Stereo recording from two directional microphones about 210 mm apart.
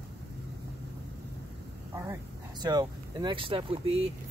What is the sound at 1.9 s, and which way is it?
Speech, 15° right (ahead or behind).